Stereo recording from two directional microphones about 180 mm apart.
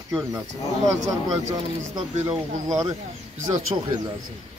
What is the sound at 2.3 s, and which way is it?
Speech, 25° right (ahead or behind).